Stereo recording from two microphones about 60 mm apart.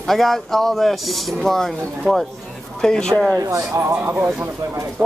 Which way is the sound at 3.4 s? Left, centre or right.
Right.